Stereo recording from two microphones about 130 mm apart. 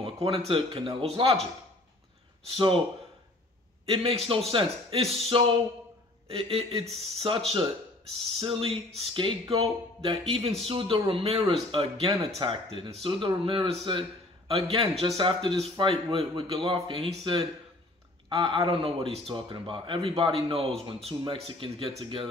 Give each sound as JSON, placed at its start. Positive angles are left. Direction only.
{"t": 0.0, "sound": "speech", "side_deg": -45}
{"t": 2.5, "sound": "speech", "side_deg": -45}
{"t": 3.8, "sound": "a man's voice", "side_deg": -50}